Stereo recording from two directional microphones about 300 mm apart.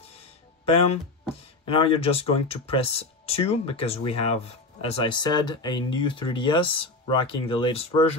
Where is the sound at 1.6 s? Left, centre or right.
Centre.